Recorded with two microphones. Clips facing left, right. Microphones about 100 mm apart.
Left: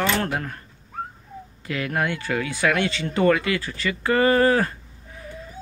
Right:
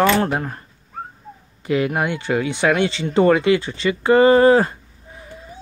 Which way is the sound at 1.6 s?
25° right (ahead or behind).